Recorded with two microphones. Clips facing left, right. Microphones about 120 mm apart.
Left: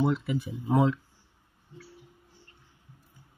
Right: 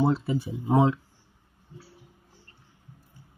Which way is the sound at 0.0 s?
35° right (ahead or behind).